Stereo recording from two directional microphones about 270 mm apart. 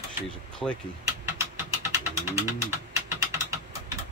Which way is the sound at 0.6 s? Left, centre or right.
Centre.